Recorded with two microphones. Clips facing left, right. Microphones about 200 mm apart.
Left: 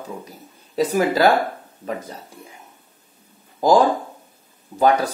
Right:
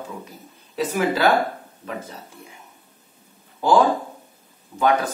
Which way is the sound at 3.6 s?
40° left (ahead or behind).